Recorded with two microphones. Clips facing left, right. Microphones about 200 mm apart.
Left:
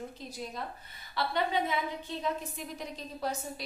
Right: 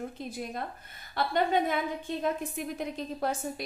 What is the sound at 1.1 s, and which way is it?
A woman's voice, 50° right (ahead or behind).